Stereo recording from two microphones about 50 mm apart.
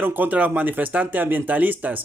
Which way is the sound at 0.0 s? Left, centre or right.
Right.